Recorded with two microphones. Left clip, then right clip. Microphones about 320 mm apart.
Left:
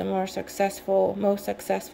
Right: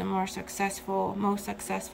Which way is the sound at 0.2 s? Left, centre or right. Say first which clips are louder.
Left 5 dB; centre.